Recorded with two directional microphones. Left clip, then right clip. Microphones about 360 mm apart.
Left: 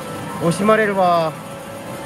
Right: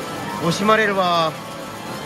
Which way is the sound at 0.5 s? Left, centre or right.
Centre.